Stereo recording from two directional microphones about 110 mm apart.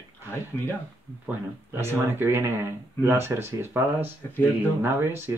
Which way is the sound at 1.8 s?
20° right (ahead or behind).